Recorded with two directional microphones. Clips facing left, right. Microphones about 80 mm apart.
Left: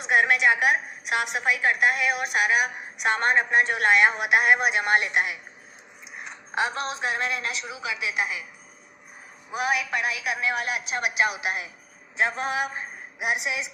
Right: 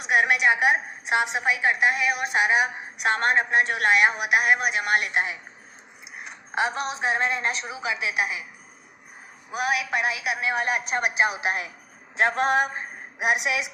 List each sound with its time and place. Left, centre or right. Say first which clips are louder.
0.0 s a woman's voice: even; centre
2.2 s a woman's voice: right 3 dB; right
3.0 s a woman's voice: even; centre
6.5 s a woman's voice: right 1 dB; right
8.1 s a woman's voice: right 1 dB; centre
9.6 s a woman's voice: even; centre
9.8 s a woman's voice: right 2 dB; right
10.5 s a woman's voice: right 3 dB; right
12.2 s a woman's voice: right 4 dB; right